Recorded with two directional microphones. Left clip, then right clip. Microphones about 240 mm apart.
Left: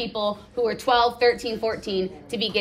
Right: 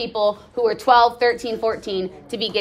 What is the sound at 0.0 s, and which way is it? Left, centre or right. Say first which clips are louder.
A woman's voice: right 6 dB; centre.